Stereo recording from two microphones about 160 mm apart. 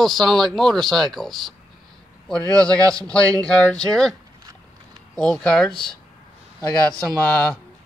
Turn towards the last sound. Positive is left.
turn(degrees=10)  # may be behind; listen again after turning